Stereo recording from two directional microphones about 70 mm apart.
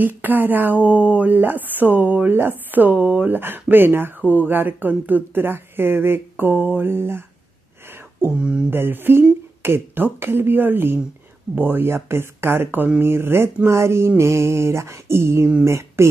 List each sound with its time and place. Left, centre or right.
0.0 s speech: right
8.4 s speech: centre
8.6 s speech: right